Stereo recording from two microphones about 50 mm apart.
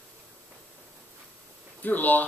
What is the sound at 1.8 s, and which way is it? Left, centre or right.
Speech, left.